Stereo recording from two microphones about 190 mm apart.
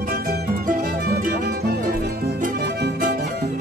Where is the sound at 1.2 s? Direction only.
55° right (ahead or behind).